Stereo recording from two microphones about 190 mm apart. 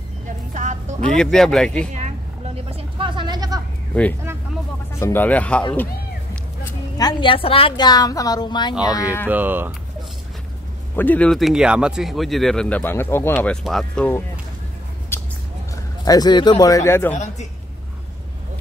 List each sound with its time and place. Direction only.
0.6 s music: 40° right (ahead or behind)
1.1 s speech: 5° left (ahead or behind)
1.9 s a sound: 35° right (ahead or behind)
2.7 s a sound: 25° right (ahead or behind)
4.9 s speech: 15° left (ahead or behind)
7.0 s a woman's voice: 25° left (ahead or behind)
9.3 s speech: 10° right (ahead or behind)
11.0 s speech: 10° left (ahead or behind)
15.1 s a sound: 10° left (ahead or behind)
16.1 s a woman's voice: 20° left (ahead or behind)
17.1 s a man's voice: 40° left (ahead or behind)